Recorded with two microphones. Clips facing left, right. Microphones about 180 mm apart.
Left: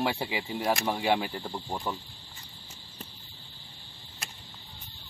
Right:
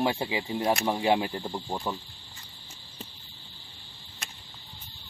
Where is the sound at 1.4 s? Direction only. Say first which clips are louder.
Right 2 dB; 10° right (ahead or behind).